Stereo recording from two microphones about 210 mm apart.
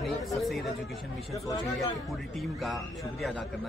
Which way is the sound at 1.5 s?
15° left (ahead or behind).